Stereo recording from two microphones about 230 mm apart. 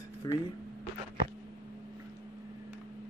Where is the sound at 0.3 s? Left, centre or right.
Centre.